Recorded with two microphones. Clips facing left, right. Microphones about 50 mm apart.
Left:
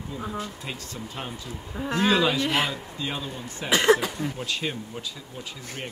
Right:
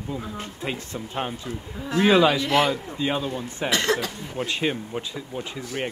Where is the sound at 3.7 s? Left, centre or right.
Centre.